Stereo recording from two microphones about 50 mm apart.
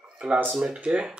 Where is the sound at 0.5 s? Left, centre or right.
Centre.